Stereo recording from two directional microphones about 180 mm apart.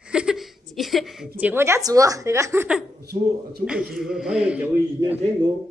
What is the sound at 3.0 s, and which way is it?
Speech, 60° right (ahead or behind).